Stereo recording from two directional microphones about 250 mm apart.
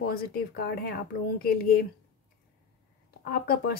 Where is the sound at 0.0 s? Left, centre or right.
Left.